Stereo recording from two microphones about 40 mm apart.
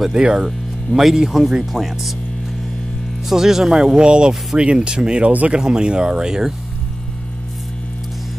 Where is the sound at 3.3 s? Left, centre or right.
Centre.